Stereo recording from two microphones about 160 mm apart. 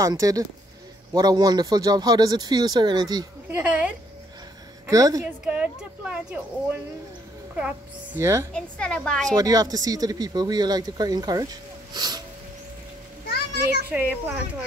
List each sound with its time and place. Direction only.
0.0 s speech: 20° right (ahead or behind)
3.4 s speech: 10° right (ahead or behind)
4.8 s a woman's voice: 20° right (ahead or behind)
5.2 s speech: 10° right (ahead or behind)
8.5 s a woman's voice: 5° left (ahead or behind)
9.3 s speech: 25° right (ahead or behind)
11.9 s a sound: 25° right (ahead or behind)
13.8 s speech: 10° right (ahead or behind)